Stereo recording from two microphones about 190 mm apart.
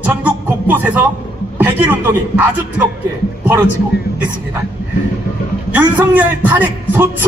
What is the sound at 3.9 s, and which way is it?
Speech, 55° left (ahead or behind).